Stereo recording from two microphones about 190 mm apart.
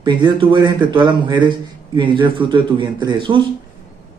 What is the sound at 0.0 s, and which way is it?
Speech, 25° right (ahead or behind).